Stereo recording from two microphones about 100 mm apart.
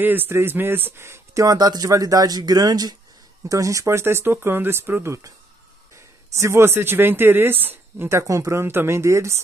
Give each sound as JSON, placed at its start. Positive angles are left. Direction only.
{"t": 0.0, "sound": "speech", "side_deg": -20}